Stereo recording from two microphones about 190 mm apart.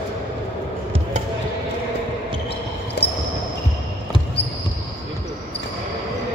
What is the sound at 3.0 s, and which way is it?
Basketball bounce, 65° left (ahead or behind).